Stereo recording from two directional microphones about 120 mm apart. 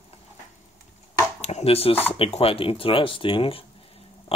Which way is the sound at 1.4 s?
60° left (ahead or behind).